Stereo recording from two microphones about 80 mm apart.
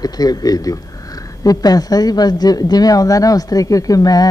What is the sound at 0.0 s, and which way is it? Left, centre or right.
Speech, left.